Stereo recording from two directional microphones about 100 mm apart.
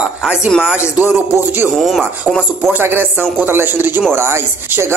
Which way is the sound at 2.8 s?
20° right (ahead or behind).